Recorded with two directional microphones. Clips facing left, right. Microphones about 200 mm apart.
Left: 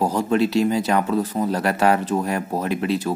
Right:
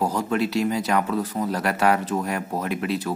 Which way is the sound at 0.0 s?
30° left (ahead or behind).